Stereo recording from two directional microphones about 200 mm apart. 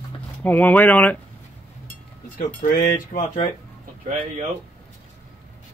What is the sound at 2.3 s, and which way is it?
Speech, 45° left (ahead or behind).